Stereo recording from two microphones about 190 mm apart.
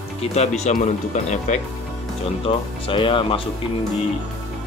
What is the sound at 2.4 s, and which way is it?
Speech, 25° left (ahead or behind).